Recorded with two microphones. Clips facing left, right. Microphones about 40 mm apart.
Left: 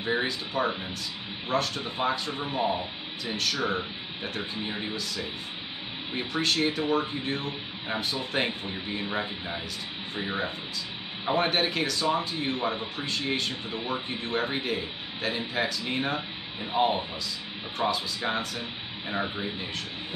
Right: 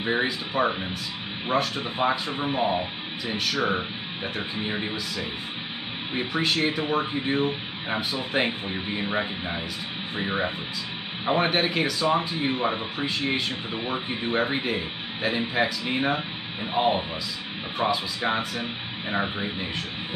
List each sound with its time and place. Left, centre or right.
0.0 s speech: centre
6.1 s speech: centre